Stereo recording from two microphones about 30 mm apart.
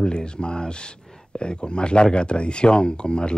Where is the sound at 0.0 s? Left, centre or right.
Left.